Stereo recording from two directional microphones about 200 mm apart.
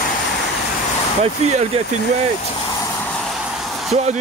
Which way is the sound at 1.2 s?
30° right (ahead or behind).